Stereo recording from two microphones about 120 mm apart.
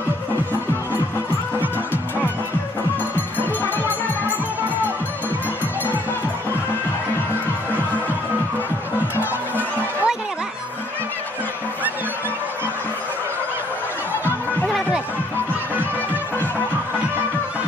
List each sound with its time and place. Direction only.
3.3 s music: 15° left (ahead or behind)
9.2 s music: 15° right (ahead or behind)